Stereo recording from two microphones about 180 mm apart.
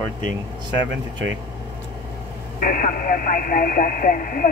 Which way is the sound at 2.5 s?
50° left (ahead or behind).